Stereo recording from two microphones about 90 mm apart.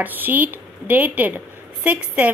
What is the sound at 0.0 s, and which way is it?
A woman's voice, 20° right (ahead or behind).